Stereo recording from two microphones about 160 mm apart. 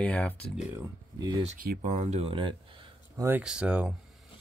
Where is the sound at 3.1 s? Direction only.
15° right (ahead or behind).